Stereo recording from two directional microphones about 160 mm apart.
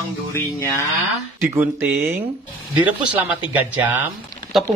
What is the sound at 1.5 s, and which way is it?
Speech, 10° right (ahead or behind).